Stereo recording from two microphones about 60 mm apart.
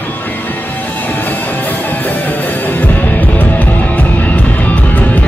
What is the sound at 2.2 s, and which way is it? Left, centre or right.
Music, left.